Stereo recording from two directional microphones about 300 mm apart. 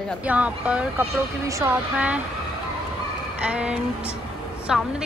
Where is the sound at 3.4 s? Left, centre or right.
Centre.